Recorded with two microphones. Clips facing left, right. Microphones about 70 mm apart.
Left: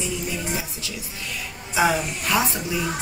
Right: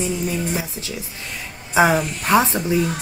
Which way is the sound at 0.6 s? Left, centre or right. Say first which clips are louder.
Right 4 dB; right.